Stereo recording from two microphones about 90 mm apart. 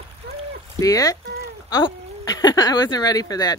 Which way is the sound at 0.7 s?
40° left (ahead or behind).